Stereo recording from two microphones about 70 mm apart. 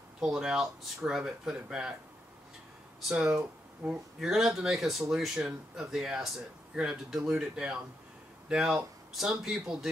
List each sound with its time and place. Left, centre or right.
0.2 s speech: centre
3.8 s speech: centre
4.3 s speech: centre